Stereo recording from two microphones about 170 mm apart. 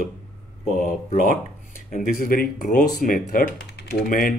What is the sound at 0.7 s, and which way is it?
Speech, 50° left (ahead or behind).